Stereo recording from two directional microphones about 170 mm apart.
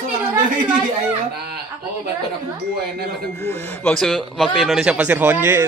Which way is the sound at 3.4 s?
15° left (ahead or behind).